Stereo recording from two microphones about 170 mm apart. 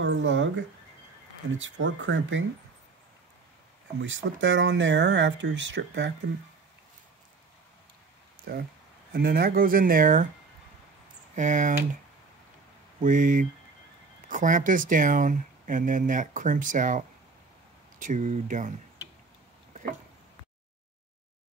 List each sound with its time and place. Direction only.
0.0 s speech: 90° right
1.6 s speech: 90° right
4.0 s speech: 90° right
8.5 s speech: 65° right (ahead or behind)
11.3 s speech: 50° right (ahead or behind)
13.0 s speech: 50° right (ahead or behind)
19.7 s a sound: 50° right (ahead or behind)